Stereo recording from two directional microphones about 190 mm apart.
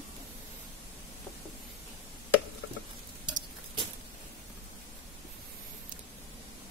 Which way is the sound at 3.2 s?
25° right (ahead or behind).